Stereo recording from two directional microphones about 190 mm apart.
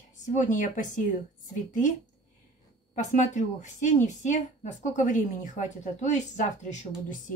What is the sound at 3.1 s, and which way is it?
Speech, 40° left (ahead or behind).